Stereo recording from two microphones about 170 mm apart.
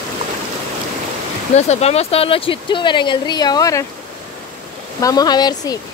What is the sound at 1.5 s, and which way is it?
Speech, 40° left (ahead or behind).